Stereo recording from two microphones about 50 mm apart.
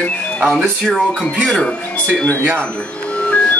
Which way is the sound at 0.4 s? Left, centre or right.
Centre.